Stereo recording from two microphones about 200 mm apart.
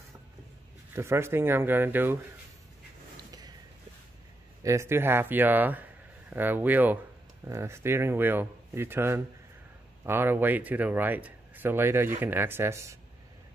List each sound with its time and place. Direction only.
0.9 s speech: 15° right (ahead or behind)
4.6 s speech: 15° right (ahead or behind)